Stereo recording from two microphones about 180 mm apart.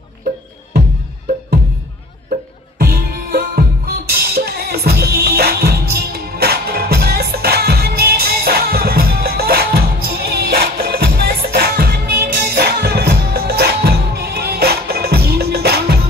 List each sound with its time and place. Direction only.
2.8 s music: 60° right (ahead or behind)